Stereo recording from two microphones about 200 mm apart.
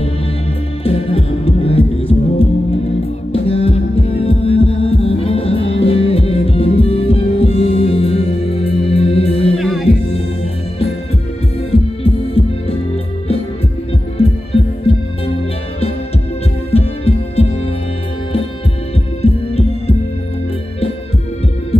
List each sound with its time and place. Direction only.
0.8 s music: 30° left (ahead or behind)
3.4 s heart sounds: 30° left (ahead or behind)
9.6 s music: centre (ahead or behind)
11.7 s heart sounds: 30° left (ahead or behind)
14.1 s music: 30° left (ahead or behind)
16.7 s heart sounds: 30° left (ahead or behind)
19.2 s heart sounds: 30° left (ahead or behind)